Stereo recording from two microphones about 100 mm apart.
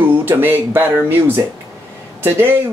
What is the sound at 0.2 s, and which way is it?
Speech, 20° right (ahead or behind).